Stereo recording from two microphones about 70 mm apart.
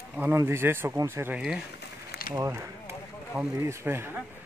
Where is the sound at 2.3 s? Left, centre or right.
Right.